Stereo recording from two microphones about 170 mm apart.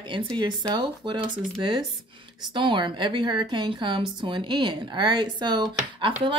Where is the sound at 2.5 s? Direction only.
30° right (ahead or behind).